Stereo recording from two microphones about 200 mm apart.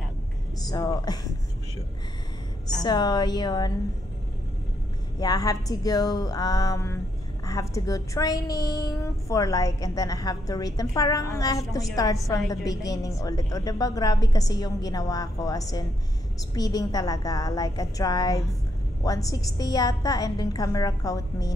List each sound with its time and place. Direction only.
0.7 s a woman's voice: 20° left (ahead or behind)
2.8 s a woman's voice: 20° left (ahead or behind)
5.2 s a woman's voice: 20° left (ahead or behind)